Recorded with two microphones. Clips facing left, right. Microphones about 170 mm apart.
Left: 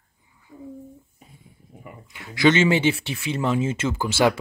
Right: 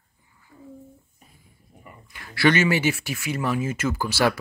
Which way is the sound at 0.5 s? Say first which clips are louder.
Left 6 dB; 20° left (ahead or behind).